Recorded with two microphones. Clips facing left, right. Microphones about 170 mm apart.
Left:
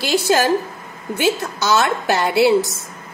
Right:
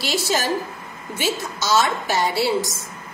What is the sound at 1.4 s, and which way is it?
Speech, 60° left (ahead or behind).